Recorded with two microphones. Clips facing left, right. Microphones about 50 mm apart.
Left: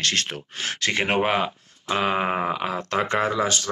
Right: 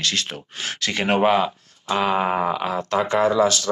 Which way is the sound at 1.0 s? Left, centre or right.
Centre.